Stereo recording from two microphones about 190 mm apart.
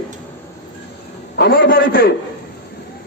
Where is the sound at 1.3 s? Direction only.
65° left (ahead or behind).